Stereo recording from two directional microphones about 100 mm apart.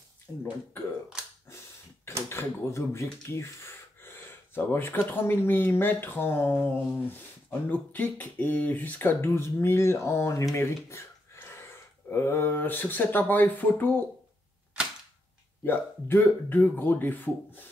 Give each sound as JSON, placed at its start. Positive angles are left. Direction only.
{"t": 1.2, "sound": "a sound", "side_deg": -5}
{"t": 2.2, "sound": "speech", "side_deg": 25}
{"t": 15.6, "sound": "speech", "side_deg": 20}